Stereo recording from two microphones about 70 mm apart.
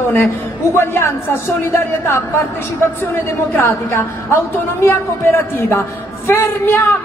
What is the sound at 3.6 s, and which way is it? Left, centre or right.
A man's voice, left.